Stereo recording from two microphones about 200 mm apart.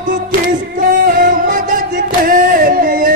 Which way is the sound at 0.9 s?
45° right (ahead or behind).